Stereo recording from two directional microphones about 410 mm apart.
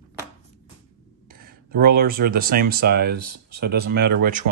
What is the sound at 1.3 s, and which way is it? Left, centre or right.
Speech, right.